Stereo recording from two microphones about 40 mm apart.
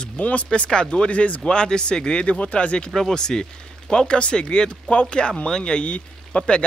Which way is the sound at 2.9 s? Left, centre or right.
Centre.